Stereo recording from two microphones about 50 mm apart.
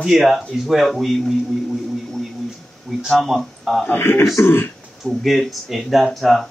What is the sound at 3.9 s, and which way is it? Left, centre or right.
Speech, left.